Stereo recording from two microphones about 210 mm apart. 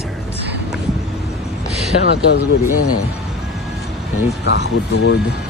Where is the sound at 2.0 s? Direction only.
55° left (ahead or behind).